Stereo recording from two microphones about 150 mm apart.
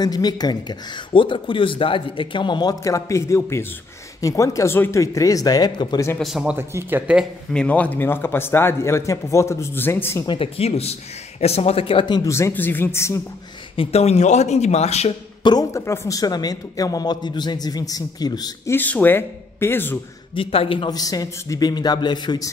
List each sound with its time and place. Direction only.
0.0 s speech: 25° left (ahead or behind)
6.1 s speech: centre (ahead or behind)
6.5 s speech: 15° right (ahead or behind)
7.5 s a man's voice: 10° left (ahead or behind)
10.2 s speech: 35° left (ahead or behind)
12.3 s a man's voice: 20° left (ahead or behind)
13.7 s speech: 45° left (ahead or behind)
15.4 s speech: 25° left (ahead or behind)
18.8 s a man's voice: 10° left (ahead or behind)
20.3 s speech: 35° left (ahead or behind)